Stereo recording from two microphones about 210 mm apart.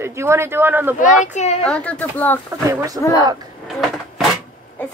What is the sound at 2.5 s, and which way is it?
Speech, 15° right (ahead or behind).